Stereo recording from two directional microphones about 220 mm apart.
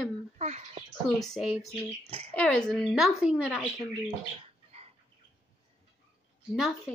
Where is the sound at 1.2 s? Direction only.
Centre (ahead or behind).